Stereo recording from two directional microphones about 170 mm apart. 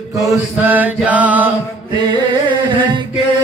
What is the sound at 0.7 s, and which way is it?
Mantra, 10° right (ahead or behind).